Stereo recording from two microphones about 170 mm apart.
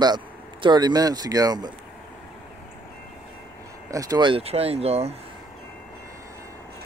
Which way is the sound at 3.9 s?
20° right (ahead or behind).